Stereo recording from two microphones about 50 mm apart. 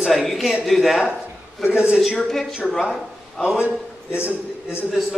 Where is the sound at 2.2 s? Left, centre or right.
Centre.